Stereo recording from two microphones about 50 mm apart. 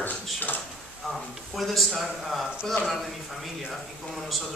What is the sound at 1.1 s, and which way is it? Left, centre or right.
A man's voice, centre.